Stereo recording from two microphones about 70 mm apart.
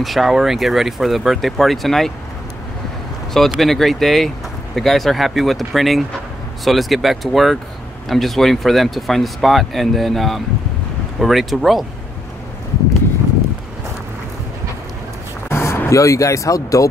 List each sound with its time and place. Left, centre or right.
0.0 s speech: centre
3.3 s speech: centre
15.5 s a sound: left
15.9 s speech: left